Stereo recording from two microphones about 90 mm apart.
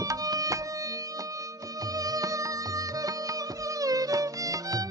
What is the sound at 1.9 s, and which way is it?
Music, 40° right (ahead or behind).